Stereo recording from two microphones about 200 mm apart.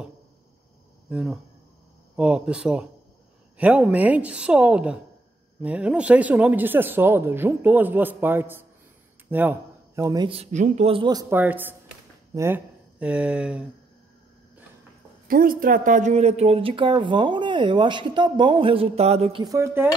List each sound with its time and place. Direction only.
1.0 s speech: 5° right (ahead or behind)
15.2 s speech: 45° right (ahead or behind); by 19.9 s 10° right (ahead or behind)